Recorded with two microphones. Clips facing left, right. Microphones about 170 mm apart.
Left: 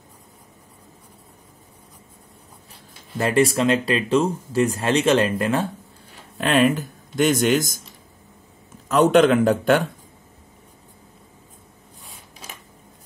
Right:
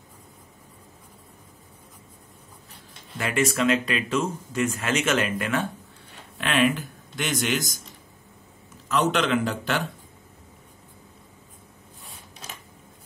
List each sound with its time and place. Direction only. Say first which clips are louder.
3.2 s speech: left 6 dB; 35° left (ahead or behind)
8.8 s a man's voice: left 8 dB; 50° left (ahead or behind)